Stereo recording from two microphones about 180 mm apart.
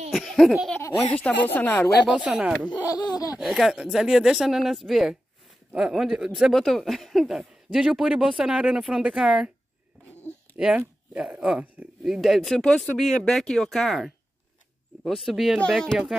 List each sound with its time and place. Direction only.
0.1 s speech: centre (ahead or behind)
2.0 s speech: centre (ahead or behind)
2.9 s laughter: 20° left (ahead or behind)
3.3 s speech: centre (ahead or behind)
10.8 s speech: 10° right (ahead or behind)